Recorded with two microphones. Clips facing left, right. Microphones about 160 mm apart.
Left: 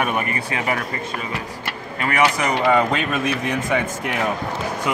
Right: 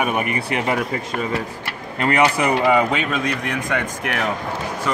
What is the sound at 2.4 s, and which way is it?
Speech, 10° right (ahead or behind).